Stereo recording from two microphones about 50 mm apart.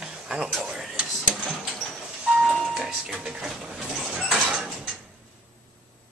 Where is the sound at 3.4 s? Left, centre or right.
Centre.